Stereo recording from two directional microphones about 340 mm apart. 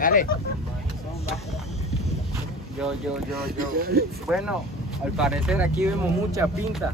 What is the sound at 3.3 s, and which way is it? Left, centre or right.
Speech, right.